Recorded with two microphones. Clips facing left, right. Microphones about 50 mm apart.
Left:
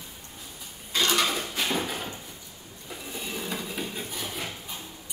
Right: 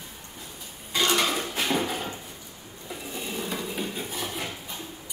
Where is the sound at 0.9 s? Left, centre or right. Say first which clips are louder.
Right 1 dB; centre.